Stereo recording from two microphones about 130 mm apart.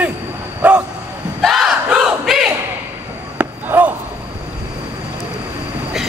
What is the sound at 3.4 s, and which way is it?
Basketball bounce, 15° right (ahead or behind).